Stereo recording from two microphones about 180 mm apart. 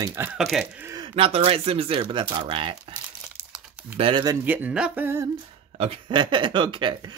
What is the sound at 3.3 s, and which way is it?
Crumpling, 15° right (ahead or behind).